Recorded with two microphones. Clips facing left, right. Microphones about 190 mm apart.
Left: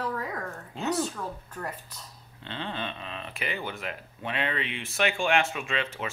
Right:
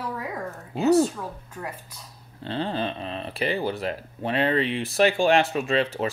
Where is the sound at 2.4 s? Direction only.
35° right (ahead or behind).